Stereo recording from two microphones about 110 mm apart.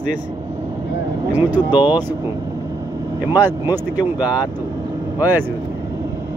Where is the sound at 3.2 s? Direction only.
20° right (ahead or behind).